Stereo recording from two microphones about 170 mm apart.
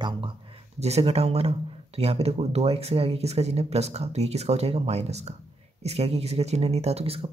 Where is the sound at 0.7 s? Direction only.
40° right (ahead or behind).